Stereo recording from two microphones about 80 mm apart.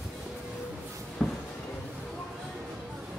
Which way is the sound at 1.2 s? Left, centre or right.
Centre.